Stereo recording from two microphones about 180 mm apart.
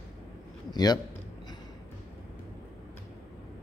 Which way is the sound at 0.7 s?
20° left (ahead or behind).